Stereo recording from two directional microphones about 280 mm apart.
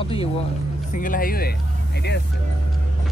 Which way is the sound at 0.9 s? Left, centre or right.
Left.